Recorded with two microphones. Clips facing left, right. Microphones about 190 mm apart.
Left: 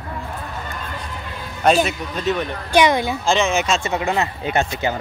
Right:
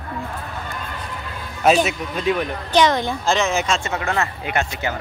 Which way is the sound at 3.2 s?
Centre (ahead or behind).